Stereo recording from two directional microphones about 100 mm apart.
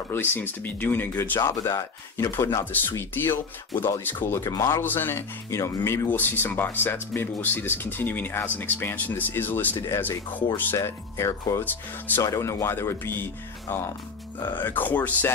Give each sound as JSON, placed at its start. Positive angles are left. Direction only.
{"t": 0.1, "sound": "speech", "side_deg": 20}
{"t": 1.4, "sound": "speech", "side_deg": 35}
{"t": 4.4, "sound": "speech", "side_deg": 35}
{"t": 4.8, "sound": "speech", "side_deg": 20}
{"t": 11.6, "sound": "speech", "side_deg": 20}
{"t": 12.2, "sound": "speech", "side_deg": 30}